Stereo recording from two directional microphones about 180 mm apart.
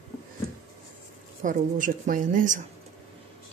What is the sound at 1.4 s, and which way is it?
A woman's voice, 45° right (ahead or behind).